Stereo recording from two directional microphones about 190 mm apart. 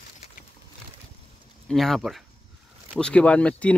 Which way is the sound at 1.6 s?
Centre (ahead or behind).